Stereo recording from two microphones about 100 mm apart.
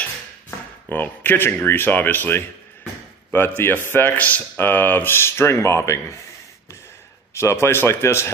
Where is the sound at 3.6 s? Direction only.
25° left (ahead or behind).